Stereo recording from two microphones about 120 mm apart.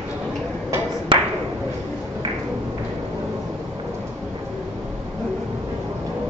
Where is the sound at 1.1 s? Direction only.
45° right (ahead or behind).